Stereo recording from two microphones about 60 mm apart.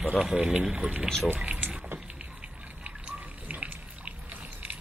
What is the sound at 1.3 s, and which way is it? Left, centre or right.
Liquid, centre.